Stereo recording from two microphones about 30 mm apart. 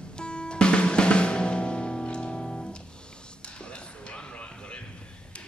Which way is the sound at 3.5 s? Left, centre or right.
Left.